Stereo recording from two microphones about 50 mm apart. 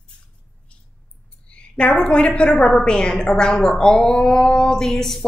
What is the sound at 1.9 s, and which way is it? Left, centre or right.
A woman's voice, centre.